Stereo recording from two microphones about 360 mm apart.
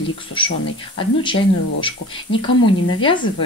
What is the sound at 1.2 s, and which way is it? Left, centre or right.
Speech, centre.